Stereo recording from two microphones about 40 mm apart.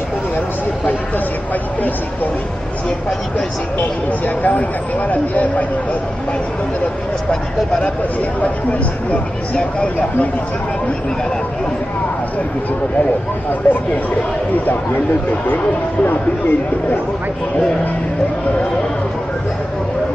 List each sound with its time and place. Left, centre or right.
4.4 s speech: left
8.4 s speech: left
13.7 s speech: left
15.4 s speech: left